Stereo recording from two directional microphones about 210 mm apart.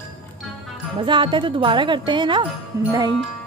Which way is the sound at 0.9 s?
25° right (ahead or behind).